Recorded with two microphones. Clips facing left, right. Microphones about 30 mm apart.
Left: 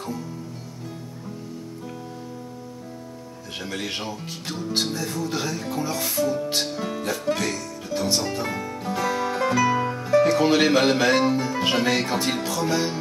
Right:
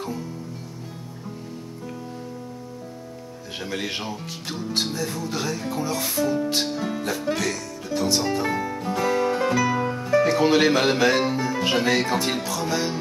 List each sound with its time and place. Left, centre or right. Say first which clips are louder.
3.6 s speech: right 1 dB; centre